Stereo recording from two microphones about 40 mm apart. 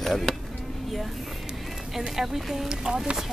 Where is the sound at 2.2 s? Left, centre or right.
Centre.